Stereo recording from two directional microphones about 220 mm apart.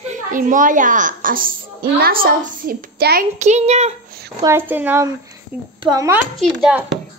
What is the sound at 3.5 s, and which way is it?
Speech, 30° right (ahead or behind).